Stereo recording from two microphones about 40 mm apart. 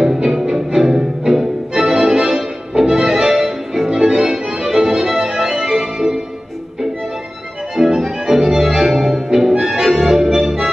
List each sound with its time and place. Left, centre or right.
0.0 s music: centre
7.7 s music: centre